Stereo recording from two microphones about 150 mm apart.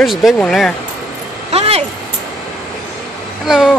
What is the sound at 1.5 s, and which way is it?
Vehicle, 45° right (ahead or behind).